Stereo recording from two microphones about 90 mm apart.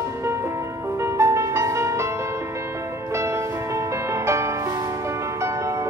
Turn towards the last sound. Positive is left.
turn(degrees=-35)  # may be behind; listen again after turning